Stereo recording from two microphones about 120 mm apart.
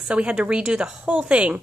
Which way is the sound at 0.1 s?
10° right (ahead or behind).